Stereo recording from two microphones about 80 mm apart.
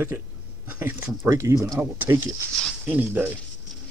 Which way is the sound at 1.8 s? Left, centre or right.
Right.